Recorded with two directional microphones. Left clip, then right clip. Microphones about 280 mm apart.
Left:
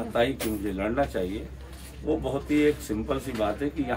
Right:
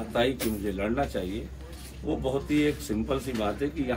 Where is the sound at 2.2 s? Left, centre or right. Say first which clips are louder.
Left 1 dB; centre.